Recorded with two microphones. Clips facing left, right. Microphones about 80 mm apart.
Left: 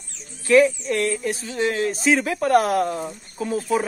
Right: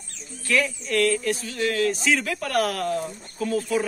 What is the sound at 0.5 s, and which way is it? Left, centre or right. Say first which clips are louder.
Speech: left 8 dB; left.